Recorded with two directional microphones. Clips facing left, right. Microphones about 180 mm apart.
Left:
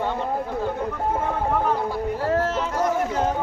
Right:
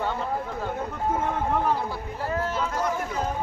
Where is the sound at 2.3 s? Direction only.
90° left.